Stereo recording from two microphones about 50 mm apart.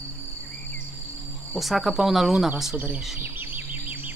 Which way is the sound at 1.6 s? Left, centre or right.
Centre.